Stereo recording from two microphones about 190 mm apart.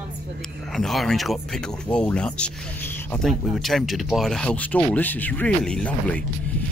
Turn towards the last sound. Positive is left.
turn(degrees=5)  # may be behind; listen again after turning